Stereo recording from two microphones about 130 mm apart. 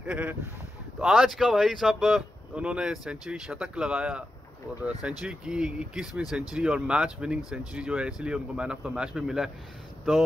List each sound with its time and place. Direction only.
0.0 s speech: 10° right (ahead or behind)